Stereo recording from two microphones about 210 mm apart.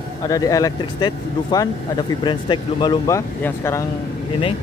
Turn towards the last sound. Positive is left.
turn(degrees=15)  # may be behind; listen again after turning